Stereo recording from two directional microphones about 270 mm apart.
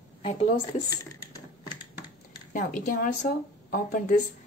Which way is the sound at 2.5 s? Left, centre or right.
Left.